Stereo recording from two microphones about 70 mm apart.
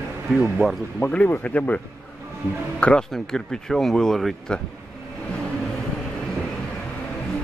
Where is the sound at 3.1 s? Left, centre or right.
Centre.